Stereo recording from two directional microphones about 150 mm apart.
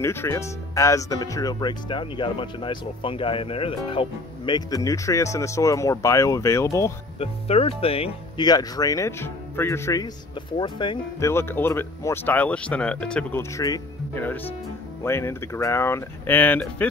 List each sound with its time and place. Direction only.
0.0 s speech: 15° left (ahead or behind)
7.2 s speech: 40° left (ahead or behind)
8.5 s speech: 25° left (ahead or behind)
10.6 s speech: 30° left (ahead or behind)
11.1 s speech: 20° left (ahead or behind)
13.4 s speech: 20° left (ahead or behind)